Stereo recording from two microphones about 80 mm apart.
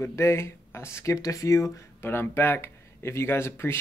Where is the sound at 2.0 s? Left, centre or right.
Left.